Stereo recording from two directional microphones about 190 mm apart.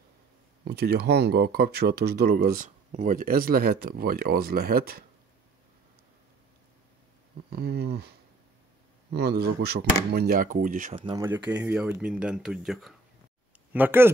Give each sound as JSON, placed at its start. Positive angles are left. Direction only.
{"t": 0.7, "sound": "speech", "side_deg": -60}
{"t": 7.4, "sound": "speech", "side_deg": -55}
{"t": 9.1, "sound": "speech", "side_deg": -60}
{"t": 11.0, "sound": "speech", "side_deg": -25}
{"t": 11.2, "sound": "speech", "side_deg": -10}